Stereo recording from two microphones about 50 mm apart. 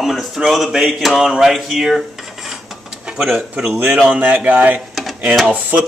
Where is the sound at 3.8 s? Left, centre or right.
Right.